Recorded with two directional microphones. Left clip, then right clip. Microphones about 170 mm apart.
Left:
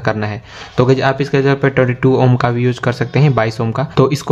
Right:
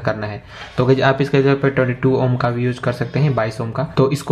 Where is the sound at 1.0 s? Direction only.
5° left (ahead or behind).